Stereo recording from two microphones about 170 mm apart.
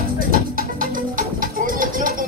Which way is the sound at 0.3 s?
55° right (ahead or behind).